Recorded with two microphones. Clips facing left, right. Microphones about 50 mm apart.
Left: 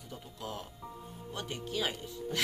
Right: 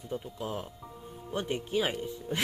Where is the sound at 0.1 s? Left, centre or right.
Right.